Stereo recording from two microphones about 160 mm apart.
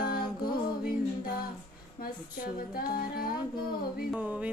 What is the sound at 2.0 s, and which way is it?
Music, 70° left (ahead or behind).